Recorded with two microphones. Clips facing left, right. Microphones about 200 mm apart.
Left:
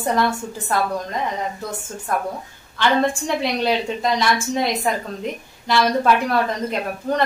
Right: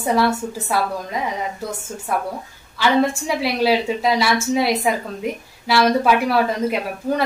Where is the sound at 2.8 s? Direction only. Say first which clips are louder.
Right 1 dB; 5° right (ahead or behind).